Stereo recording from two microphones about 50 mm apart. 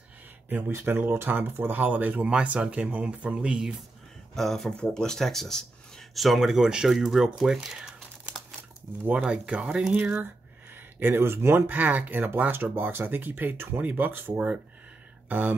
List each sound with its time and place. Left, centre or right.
0.7 s speech: right; by 3.7 s centre
4.4 s speech: centre
9.2 s speech: centre
11.0 s speech: right